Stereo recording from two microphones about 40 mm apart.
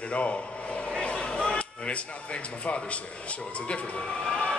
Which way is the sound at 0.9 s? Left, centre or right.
Left.